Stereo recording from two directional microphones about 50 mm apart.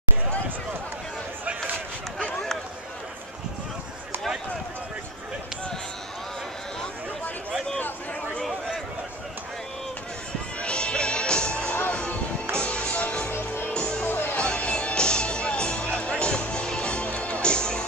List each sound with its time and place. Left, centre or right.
10.6 s music: left
14.0 s music: left
14.3 s music: left